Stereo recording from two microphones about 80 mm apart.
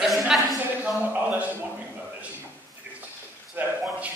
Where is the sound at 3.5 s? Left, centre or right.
Centre.